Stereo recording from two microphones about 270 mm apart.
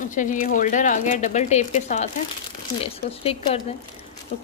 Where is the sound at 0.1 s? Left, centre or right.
Left.